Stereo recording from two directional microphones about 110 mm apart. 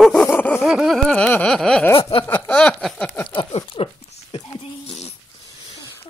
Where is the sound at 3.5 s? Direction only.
60° left (ahead or behind).